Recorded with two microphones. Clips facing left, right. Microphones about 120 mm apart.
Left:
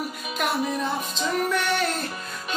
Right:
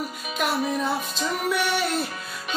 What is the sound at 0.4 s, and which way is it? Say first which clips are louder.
Music: right 1 dB; centre (ahead or behind).